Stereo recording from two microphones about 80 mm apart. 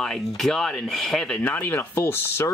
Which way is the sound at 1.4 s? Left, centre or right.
Left.